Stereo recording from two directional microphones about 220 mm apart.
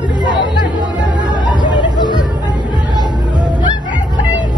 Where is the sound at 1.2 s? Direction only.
20° right (ahead or behind).